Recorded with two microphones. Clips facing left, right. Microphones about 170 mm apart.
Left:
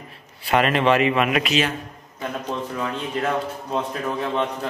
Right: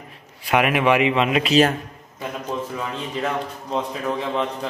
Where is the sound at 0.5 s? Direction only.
10° right (ahead or behind).